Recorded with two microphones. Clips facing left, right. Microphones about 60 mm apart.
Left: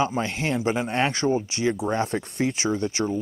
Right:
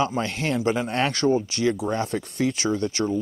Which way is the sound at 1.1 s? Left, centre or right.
Left.